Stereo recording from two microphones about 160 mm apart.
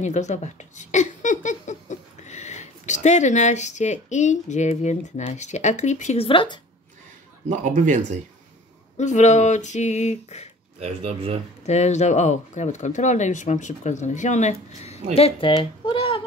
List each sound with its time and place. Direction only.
0.0 s speech: 50° left (ahead or behind)
6.2 s a woman's voice: 30° left (ahead or behind)
7.4 s speech: 50° right (ahead or behind)
8.9 s speech: 45° left (ahead or behind)
10.8 s speech: 40° right (ahead or behind)
11.6 s speech: 45° left (ahead or behind)